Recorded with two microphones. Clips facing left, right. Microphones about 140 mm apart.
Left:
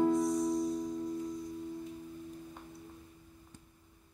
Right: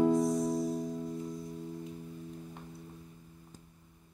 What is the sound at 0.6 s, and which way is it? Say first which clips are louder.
Music: even; 50° right (ahead or behind).